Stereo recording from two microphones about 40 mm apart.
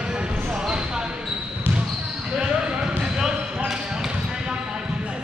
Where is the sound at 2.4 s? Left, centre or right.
Right.